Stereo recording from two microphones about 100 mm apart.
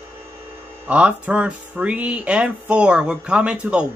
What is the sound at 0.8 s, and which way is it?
Speech, 15° right (ahead or behind).